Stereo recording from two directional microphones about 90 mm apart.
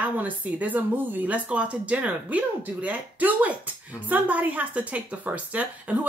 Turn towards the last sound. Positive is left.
turn(degrees=-15)  # may be behind; listen again after turning